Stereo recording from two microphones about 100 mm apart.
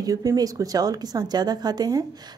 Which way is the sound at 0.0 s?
35° right (ahead or behind).